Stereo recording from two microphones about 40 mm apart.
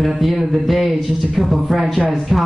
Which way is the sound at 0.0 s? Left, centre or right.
Centre.